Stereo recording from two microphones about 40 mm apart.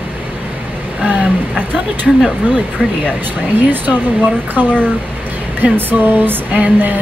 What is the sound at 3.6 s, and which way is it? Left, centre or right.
Speech, right.